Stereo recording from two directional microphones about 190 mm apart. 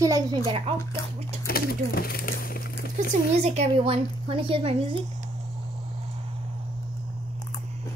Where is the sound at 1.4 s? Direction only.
50° left (ahead or behind).